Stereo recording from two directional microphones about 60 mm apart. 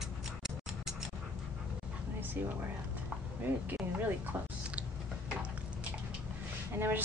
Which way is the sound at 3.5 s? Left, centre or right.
Right.